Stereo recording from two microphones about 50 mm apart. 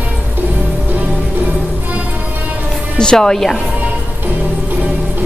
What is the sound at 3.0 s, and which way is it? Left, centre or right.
Speech, centre.